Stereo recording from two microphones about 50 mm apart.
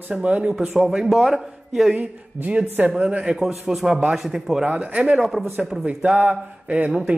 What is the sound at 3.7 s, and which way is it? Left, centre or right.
Speech, centre.